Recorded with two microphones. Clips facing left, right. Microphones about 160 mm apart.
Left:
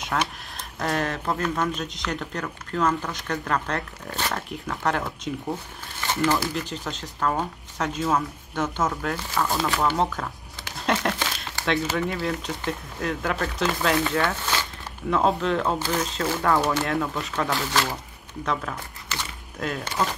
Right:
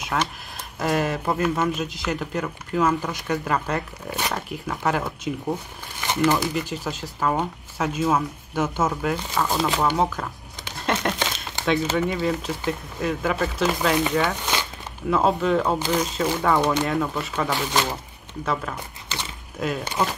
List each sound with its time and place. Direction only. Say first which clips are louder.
0.2 s speech: right 2 dB; 5° right (ahead or behind)
5.5 s speech: right 3 dB; 15° right (ahead or behind)
6.5 s speech: right 3 dB; 5° right (ahead or behind)
9.9 s speech: right 2 dB; centre (ahead or behind)
11.1 s crumpling: right 2 dB; 20° right (ahead or behind)
11.9 s speech: right 3 dB; centre (ahead or behind)
14.2 s speech: right 1 dB; 15° right (ahead or behind)
15.0 s speech: right 2 dB; 5° right (ahead or behind)
16.4 s speech: right 1 dB; 5° left (ahead or behind)
17.5 s speech: right 2 dB; 20° right (ahead or behind)
18.4 s speech: right 1 dB; centre (ahead or behind)
20.0 s speech: right 1 dB; 15° right (ahead or behind)